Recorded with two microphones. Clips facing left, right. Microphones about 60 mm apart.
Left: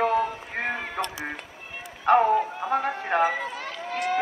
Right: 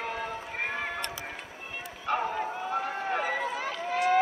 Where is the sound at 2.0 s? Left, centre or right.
Left.